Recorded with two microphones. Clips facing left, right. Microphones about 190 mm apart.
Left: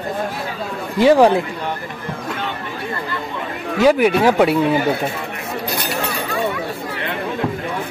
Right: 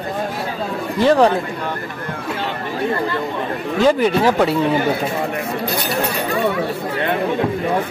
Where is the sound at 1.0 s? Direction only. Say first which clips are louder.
Left 2 dB; 10° left (ahead or behind).